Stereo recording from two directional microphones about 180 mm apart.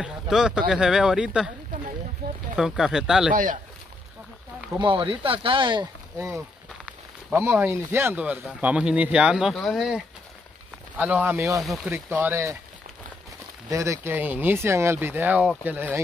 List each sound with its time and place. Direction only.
0.0 s speech: 5° right (ahead or behind)
2.5 s speech: 5° right (ahead or behind)
4.7 s speech: 25° right (ahead or behind)
6.1 s speech: 15° right (ahead or behind)
11.6 s speech: centre (ahead or behind)
11.9 s speech: 10° right (ahead or behind)
13.7 s speech: 15° right (ahead or behind)